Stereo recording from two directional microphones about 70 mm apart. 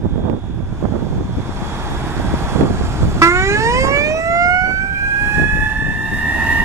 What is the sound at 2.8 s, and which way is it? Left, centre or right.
Emergency vehicle, right.